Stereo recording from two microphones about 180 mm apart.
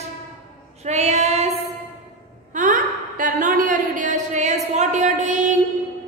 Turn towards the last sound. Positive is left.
turn(degrees=-40)  # may be behind; listen again after turning